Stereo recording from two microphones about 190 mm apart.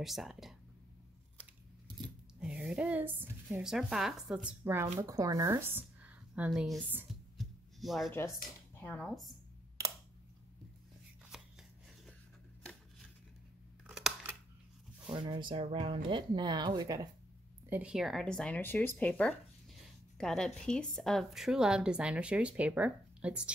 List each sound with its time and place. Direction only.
0.0 s a woman's voice: centre (ahead or behind)
2.4 s a woman's voice: 5° right (ahead or behind)
7.3 s music: centre (ahead or behind)
8.7 s speech: 5° left (ahead or behind)
13.8 s scissors: 5° right (ahead or behind)
15.0 s speech: 25° right (ahead or behind)
17.6 s a woman's voice: 5° right (ahead or behind)